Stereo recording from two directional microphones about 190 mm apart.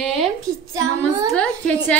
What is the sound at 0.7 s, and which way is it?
Child singing, 20° right (ahead or behind).